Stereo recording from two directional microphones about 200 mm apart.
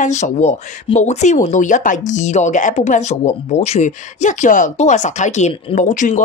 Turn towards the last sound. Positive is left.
turn(degrees=40)  # may be behind; listen again after turning